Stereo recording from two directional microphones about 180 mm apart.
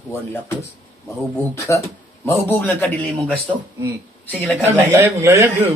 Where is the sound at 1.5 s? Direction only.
15° left (ahead or behind).